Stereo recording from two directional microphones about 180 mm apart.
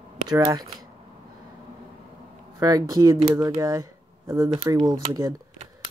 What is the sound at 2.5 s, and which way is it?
Speech, 20° right (ahead or behind).